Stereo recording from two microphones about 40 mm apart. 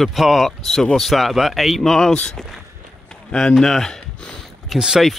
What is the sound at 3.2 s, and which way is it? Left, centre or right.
Speech, centre.